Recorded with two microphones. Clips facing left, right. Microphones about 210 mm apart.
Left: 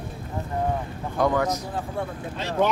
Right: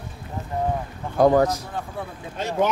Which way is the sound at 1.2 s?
40° right (ahead or behind).